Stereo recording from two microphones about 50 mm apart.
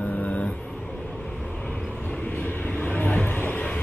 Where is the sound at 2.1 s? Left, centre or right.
Left.